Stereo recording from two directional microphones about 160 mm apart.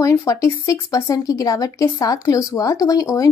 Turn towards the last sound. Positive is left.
turn(degrees=20)  # may be behind; listen again after turning